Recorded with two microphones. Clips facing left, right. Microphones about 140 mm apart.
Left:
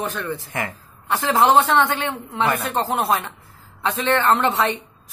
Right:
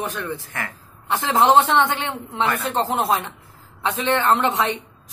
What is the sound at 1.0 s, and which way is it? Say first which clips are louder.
A man's voice: even; 20° right (ahead or behind).